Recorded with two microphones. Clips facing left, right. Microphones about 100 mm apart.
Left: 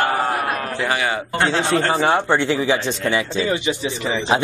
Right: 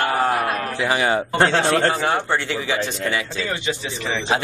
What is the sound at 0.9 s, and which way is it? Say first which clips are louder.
Speech: right 4 dB; 35° right (ahead or behind).